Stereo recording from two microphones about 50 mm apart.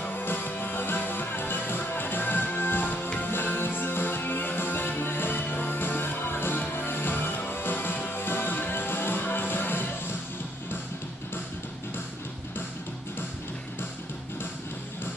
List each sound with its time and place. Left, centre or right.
0.1 s music: left